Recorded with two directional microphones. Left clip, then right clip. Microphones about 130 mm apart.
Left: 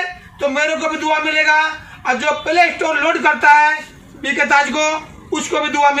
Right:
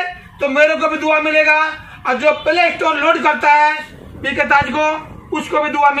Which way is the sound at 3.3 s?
5° right (ahead or behind).